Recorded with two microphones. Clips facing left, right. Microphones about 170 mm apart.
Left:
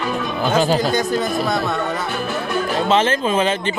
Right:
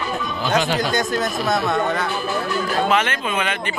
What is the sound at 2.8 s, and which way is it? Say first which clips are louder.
Speech: left 4 dB; 30° left (ahead or behind).